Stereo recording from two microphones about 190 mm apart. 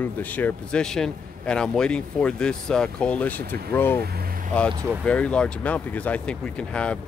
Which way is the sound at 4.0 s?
55° right (ahead or behind).